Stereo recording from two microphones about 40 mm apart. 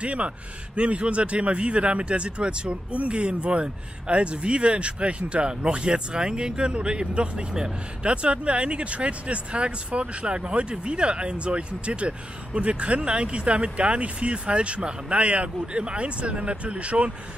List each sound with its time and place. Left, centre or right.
0.0 s speech: right